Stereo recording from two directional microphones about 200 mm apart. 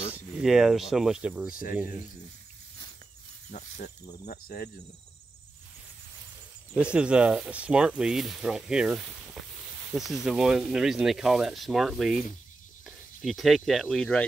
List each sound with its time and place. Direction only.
0.4 s speech: centre (ahead or behind)
3.5 s speech: 35° left (ahead or behind)
6.7 s speech: 5° right (ahead or behind)